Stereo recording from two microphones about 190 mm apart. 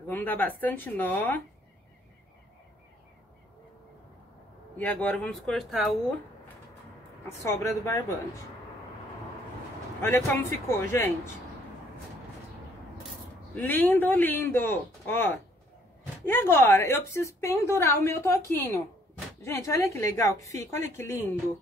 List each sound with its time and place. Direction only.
0.1 s a woman's voice: 10° left (ahead or behind)
4.7 s speech: 10° left (ahead or behind)
7.2 s a woman's voice: 15° left (ahead or behind)
10.0 s a woman's voice: 10° left (ahead or behind)
13.6 s a woman's voice: 10° left (ahead or behind)